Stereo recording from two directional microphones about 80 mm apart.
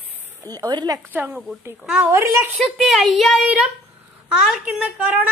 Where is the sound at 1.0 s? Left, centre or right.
Right.